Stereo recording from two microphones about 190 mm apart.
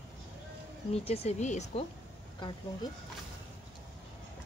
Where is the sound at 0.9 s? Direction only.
30° left (ahead or behind).